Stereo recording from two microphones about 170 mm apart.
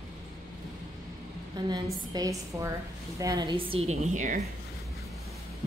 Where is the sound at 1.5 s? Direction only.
25° right (ahead or behind); by 4.5 s 45° right (ahead or behind).